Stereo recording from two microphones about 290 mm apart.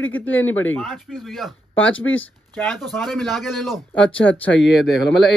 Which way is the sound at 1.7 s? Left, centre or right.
Left.